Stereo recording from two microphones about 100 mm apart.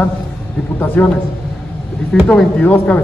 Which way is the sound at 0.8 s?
20° left (ahead or behind).